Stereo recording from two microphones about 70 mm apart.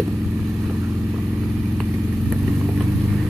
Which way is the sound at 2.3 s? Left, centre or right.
Right.